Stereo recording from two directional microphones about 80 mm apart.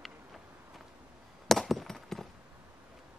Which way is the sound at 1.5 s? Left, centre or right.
Centre.